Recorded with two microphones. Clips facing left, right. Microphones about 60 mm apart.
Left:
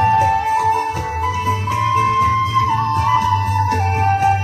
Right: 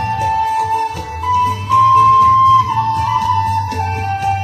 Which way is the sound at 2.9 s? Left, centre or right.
Left.